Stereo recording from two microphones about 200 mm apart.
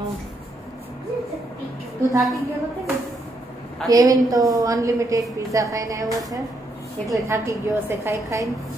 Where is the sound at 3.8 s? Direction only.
15° right (ahead or behind).